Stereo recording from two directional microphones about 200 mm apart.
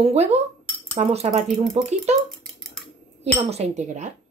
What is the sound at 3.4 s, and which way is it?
Speech, 30° right (ahead or behind).